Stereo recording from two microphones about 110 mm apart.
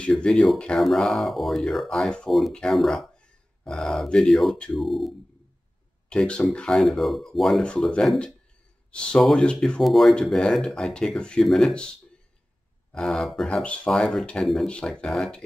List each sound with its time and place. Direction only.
0.0 s speech: 10° left (ahead or behind)
12.9 s speech: centre (ahead or behind)